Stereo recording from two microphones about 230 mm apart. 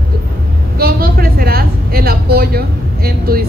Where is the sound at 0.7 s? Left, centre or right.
Right.